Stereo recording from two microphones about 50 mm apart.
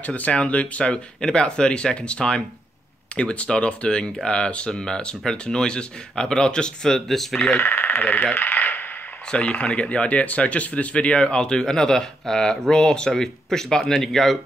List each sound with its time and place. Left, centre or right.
0.0 s speech: left; by 7.4 s centre
7.5 s speech: left
8.4 s a sound: left
9.3 s speech: left; by 14.4 s centre